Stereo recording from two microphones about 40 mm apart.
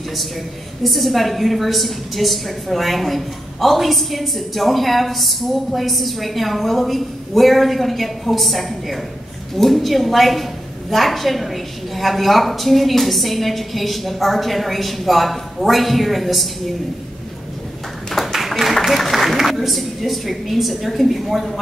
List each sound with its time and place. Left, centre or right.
0.8 s a woman's voice: centre
18.1 s a sound: centre
18.9 s a woman's voice: centre